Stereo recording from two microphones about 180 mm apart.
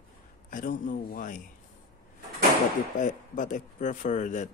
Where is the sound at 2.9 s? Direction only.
45° left (ahead or behind).